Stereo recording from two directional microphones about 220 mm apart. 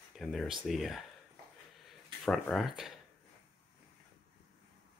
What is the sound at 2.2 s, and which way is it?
Speech, centre (ahead or behind).